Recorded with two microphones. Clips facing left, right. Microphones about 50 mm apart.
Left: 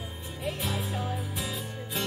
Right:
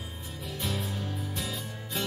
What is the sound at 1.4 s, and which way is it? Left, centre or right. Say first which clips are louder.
Music: left 1 dB; centre.